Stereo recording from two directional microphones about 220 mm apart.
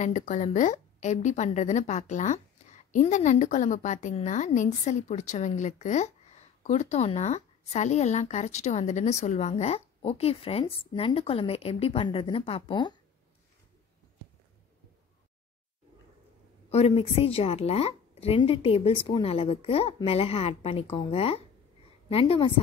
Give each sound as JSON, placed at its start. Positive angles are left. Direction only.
{"t": 0.0, "sound": "a woman's voice", "side_deg": 35}
{"t": 16.7, "sound": "a woman's voice", "side_deg": 25}